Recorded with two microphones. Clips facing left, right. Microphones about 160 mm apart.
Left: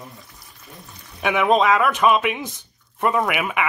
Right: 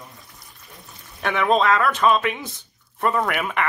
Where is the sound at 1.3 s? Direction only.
10° left (ahead or behind).